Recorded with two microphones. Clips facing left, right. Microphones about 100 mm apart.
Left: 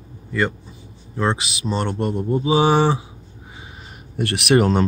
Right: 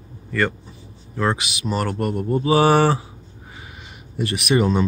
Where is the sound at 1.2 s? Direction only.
30° left (ahead or behind).